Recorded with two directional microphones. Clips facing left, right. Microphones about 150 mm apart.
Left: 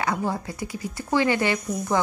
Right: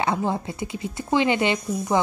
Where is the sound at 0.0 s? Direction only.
25° right (ahead or behind).